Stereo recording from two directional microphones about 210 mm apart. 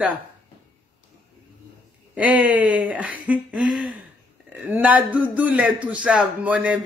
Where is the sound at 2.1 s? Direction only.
5° right (ahead or behind).